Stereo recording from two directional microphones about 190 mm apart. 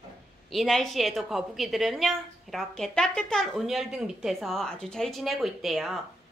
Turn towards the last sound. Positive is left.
turn(degrees=0)  # may be behind; listen again after turning